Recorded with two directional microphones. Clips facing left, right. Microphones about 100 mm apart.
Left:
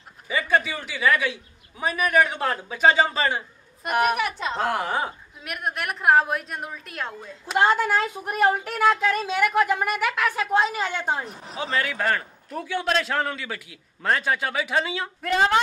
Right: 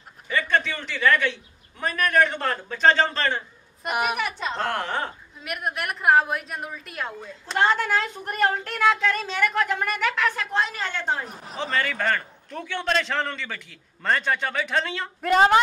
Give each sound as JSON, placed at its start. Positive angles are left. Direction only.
{"t": 0.3, "sound": "a man's voice", "side_deg": 5}
{"t": 7.5, "sound": "a woman's voice", "side_deg": 10}